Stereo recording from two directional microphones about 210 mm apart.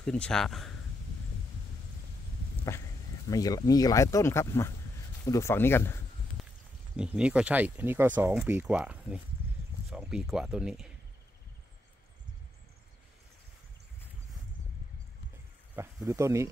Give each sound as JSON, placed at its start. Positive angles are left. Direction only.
{"t": 0.0, "sound": "speech", "side_deg": 5}
{"t": 3.3, "sound": "speech", "side_deg": 15}
{"t": 6.4, "sound": "a sound", "side_deg": 0}
{"t": 7.0, "sound": "speech", "side_deg": -5}
{"t": 15.7, "sound": "speech", "side_deg": -15}